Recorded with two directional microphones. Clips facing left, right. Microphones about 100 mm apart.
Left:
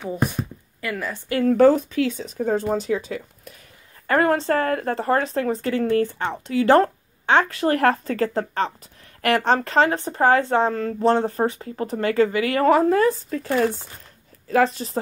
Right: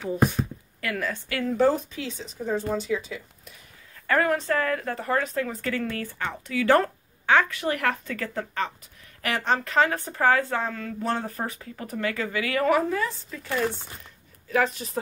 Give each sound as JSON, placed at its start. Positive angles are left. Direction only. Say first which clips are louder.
{"t": 0.8, "sound": "a woman's voice", "louder": "left 1 dB", "side_deg": 5}
{"t": 1.4, "sound": "speech", "louder": "left 7 dB", "side_deg": 65}
{"t": 11.0, "sound": "speech", "louder": "left 10 dB", "side_deg": 30}
{"t": 14.5, "sound": "speech", "louder": "left 5 dB", "side_deg": 35}